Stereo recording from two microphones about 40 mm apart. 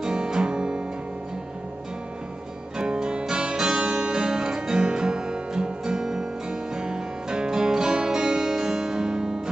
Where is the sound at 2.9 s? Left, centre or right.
Right.